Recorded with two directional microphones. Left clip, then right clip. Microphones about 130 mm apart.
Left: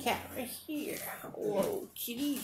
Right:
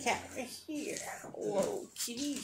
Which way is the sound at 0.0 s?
10° right (ahead or behind).